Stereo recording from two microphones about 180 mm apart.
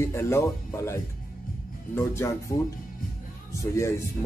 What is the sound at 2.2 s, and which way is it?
Speech, 15° left (ahead or behind).